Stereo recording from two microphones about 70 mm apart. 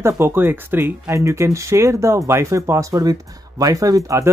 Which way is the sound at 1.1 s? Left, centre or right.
Right.